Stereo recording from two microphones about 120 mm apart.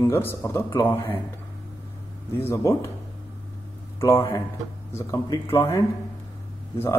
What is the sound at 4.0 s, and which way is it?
A man's voice, 25° left (ahead or behind).